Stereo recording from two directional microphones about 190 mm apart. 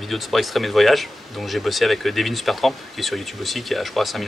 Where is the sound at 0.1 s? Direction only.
Centre (ahead or behind).